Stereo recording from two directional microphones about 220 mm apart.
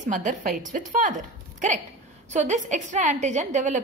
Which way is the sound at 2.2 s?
30° right (ahead or behind).